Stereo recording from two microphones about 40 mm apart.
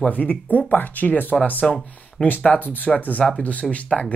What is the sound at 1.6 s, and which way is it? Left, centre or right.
Speech, centre.